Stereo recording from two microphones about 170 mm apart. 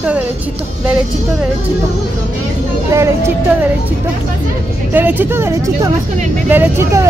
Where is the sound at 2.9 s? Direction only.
15° right (ahead or behind).